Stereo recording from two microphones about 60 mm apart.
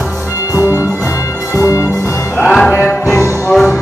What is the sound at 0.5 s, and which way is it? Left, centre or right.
Music, left.